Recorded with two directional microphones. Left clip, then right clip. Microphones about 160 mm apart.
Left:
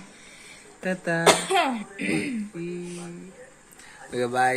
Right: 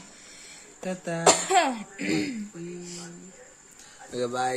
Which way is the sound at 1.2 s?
80° right.